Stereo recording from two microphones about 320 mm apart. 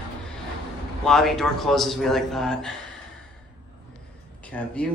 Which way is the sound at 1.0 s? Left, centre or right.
Centre.